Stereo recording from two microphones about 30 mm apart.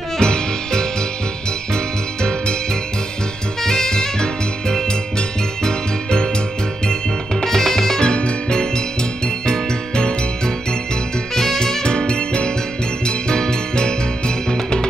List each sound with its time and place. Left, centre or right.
0.2 s music: left
3.6 s music: centre
7.4 s music: centre
8.0 s music: left
11.3 s music: centre
11.8 s music: left